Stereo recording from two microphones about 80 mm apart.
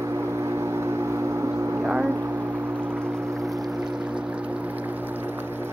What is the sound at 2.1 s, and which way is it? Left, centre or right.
Music, right.